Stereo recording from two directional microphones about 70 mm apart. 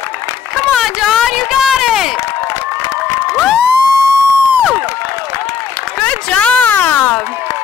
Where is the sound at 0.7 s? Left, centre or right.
Centre.